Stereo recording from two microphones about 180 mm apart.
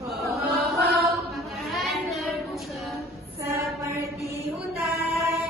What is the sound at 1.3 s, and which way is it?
Child singing, centre (ahead or behind).